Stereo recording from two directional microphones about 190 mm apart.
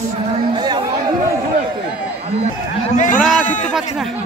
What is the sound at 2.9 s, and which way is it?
Speech, 40° left (ahead or behind).